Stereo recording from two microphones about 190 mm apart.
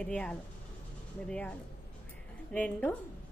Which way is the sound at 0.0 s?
5° left (ahead or behind).